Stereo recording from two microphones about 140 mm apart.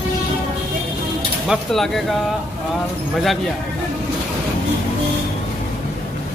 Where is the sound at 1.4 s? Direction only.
Centre (ahead or behind).